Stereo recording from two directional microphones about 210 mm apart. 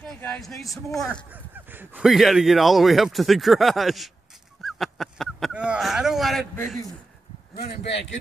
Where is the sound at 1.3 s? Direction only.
10° right (ahead or behind).